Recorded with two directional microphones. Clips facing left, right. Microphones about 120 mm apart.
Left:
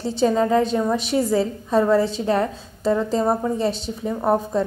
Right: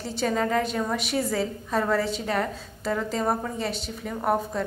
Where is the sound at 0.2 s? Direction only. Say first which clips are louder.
Left 7 dB; 20° left (ahead or behind).